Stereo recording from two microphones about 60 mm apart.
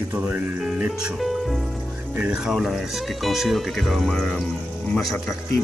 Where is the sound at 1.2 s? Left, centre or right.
Centre.